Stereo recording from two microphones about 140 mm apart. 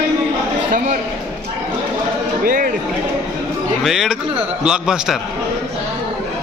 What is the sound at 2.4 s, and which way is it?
Speech, 85° right.